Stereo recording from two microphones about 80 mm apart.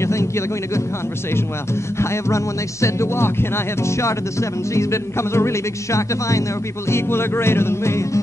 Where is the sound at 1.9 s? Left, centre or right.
Left.